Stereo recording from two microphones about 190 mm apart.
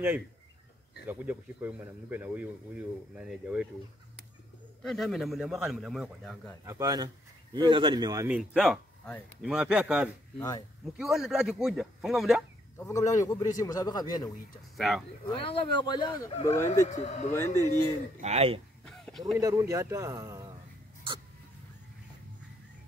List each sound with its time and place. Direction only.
1.0 s speech: 10° right (ahead or behind)
4.8 s a man's voice: centre (ahead or behind)
6.6 s speech: 15° right (ahead or behind)
8.3 s speech: 5° right (ahead or behind)
9.0 s speech: 5° left (ahead or behind)
9.5 s a man's voice: 5° right (ahead or behind)
12.7 s speech: 15° left (ahead or behind)
14.8 s a man's voice: centre (ahead or behind)
15.3 s speech: 30° left (ahead or behind)
16.8 s speech: 40° left (ahead or behind)
17.3 s speech: 10° left (ahead or behind)
18.2 s speech: 35° right (ahead or behind)
18.9 s a sound: centre (ahead or behind)
19.3 s speech: 15° right (ahead or behind)